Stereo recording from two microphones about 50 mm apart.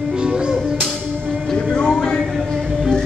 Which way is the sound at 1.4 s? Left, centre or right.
Centre.